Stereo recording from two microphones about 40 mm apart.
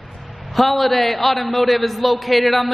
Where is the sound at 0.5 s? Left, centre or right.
Centre.